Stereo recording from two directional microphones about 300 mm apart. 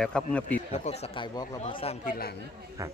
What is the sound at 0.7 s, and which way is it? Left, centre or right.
Speech, centre.